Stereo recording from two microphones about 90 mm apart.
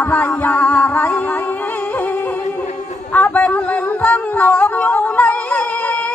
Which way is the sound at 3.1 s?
20° left (ahead or behind).